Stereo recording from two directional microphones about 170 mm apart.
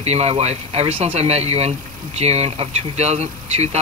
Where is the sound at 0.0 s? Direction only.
40° right (ahead or behind).